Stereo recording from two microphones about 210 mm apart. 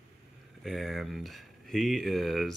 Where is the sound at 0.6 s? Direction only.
Centre (ahead or behind).